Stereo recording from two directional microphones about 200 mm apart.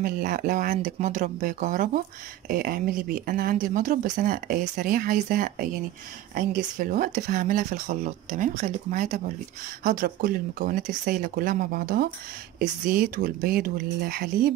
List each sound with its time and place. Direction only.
0.0 s speech: 45° right (ahead or behind)